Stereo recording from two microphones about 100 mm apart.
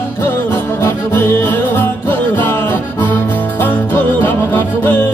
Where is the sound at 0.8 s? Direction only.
25° left (ahead or behind).